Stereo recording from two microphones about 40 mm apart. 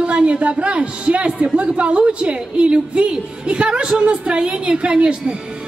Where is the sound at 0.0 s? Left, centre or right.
Right.